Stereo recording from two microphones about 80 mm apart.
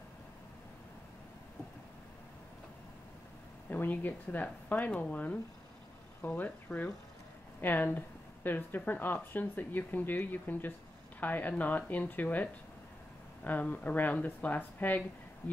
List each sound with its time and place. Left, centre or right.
3.7 s speech: left